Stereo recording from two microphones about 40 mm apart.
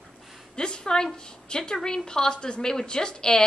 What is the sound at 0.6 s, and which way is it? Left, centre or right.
A woman's voice, left.